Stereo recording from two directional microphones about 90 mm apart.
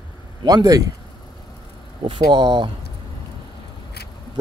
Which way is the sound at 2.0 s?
60° right (ahead or behind).